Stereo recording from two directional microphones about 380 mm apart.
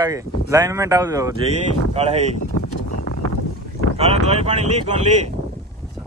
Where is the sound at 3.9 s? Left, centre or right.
Centre.